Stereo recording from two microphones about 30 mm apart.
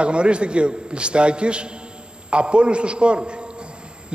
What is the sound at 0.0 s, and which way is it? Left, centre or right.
Speech, right.